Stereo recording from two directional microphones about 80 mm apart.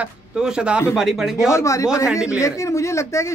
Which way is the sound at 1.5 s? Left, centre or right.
Left.